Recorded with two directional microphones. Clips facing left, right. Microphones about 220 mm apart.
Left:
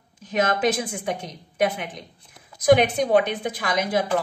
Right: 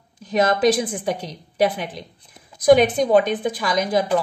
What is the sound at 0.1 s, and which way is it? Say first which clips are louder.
A woman's voice: right 4 dB; 35° right (ahead or behind).